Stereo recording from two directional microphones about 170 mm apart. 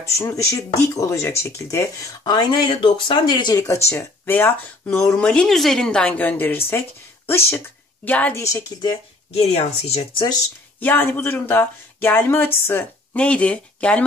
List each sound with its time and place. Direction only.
0.1 s speech: 15° left (ahead or behind)
9.3 s speech: 35° left (ahead or behind)
10.8 s speech: 10° left (ahead or behind)